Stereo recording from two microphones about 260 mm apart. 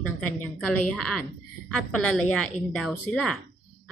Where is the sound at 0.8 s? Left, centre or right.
Centre.